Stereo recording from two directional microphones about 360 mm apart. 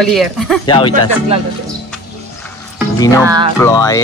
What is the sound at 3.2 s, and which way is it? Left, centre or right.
Speech, centre.